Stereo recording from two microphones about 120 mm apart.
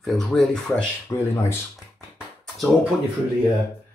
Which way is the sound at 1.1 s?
20° left (ahead or behind).